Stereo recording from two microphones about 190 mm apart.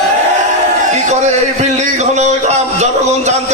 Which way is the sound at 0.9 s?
35° right (ahead or behind).